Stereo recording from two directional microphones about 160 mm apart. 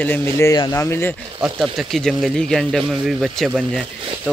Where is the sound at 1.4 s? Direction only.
Centre (ahead or behind).